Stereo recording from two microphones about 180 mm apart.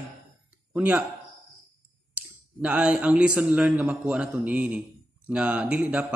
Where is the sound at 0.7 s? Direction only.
5° right (ahead or behind).